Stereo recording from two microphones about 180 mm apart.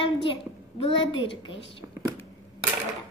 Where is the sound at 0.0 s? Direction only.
30° left (ahead or behind).